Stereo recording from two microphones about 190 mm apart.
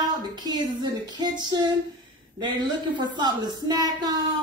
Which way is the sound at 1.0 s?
20° right (ahead or behind).